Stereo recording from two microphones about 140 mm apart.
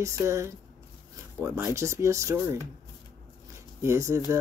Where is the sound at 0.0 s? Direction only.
20° right (ahead or behind).